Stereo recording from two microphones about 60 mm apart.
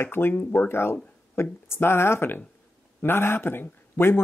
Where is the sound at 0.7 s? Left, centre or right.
Left.